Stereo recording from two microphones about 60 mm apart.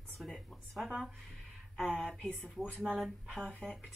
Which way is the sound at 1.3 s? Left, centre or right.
Centre.